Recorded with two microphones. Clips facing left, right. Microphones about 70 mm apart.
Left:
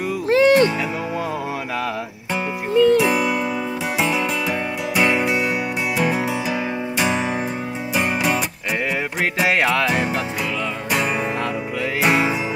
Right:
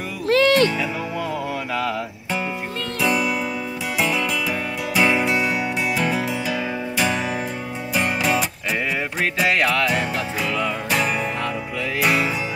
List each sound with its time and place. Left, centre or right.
0.3 s music: left
2.8 s music: centre
9.4 s music: centre
12.0 s music: centre